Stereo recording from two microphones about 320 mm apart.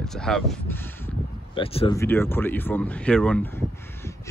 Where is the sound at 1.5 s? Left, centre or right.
Centre.